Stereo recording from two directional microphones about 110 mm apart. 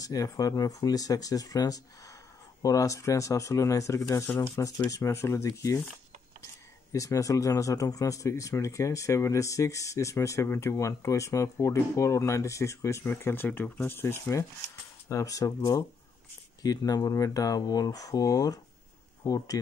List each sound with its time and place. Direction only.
0.0 s speech: 30° left (ahead or behind)
6.9 s speech: 30° left (ahead or behind)